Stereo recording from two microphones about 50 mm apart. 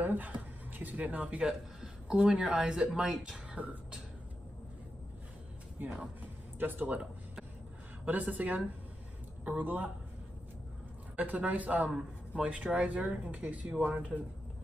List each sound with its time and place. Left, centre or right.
0.0 s a sound: right
2.0 s speech: centre
3.6 s speech: right
5.8 s speech: right
8.0 s speech: right
11.1 s speech: right